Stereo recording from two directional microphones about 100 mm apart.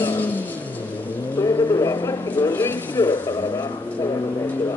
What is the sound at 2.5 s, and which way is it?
Speech, 20° left (ahead or behind).